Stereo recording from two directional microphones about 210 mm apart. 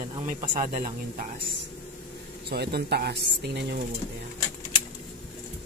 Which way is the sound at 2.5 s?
50° right (ahead or behind).